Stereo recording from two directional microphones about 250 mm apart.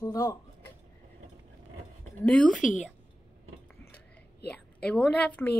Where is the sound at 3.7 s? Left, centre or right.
Centre.